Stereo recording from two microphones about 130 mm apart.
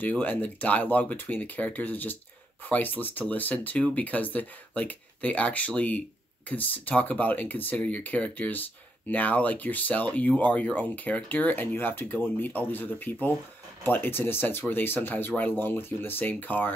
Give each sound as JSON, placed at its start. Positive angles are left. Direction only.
{"t": 0.0, "sound": "speech", "side_deg": 10}